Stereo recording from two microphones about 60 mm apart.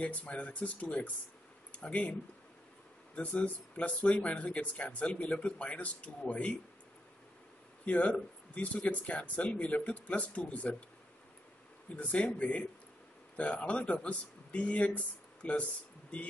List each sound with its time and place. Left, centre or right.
0.0 s speech: left
3.2 s speech: left
7.8 s speech: left
11.9 s speech: left